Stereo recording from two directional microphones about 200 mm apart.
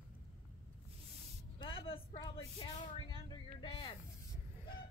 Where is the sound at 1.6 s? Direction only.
25° left (ahead or behind).